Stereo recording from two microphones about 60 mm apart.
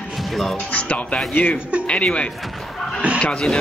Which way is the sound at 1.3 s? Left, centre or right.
Left.